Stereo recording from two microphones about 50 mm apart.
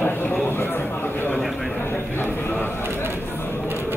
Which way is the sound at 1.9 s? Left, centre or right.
Left.